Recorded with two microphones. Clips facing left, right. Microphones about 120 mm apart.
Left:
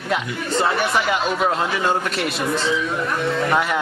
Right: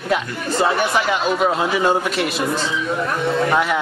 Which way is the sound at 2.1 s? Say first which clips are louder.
Right 2 dB; centre (ahead or behind).